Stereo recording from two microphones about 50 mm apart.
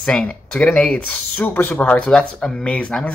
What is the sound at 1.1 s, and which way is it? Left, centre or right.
Speech, left.